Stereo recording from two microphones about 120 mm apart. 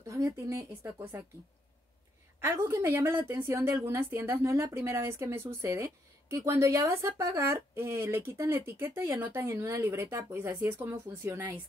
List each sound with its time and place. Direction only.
0.0 s a woman's voice: 25° right (ahead or behind)
2.4 s a woman's voice: 20° right (ahead or behind)